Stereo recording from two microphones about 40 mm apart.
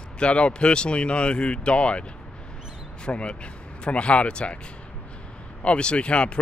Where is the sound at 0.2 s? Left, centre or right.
Left.